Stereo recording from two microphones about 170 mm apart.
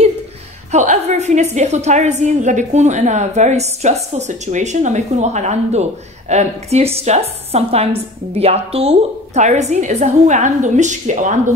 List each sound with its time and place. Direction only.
0.7 s a woman's voice: 45° right (ahead or behind)